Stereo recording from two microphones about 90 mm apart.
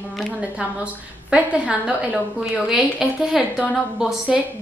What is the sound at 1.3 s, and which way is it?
A woman's voice, 15° right (ahead or behind).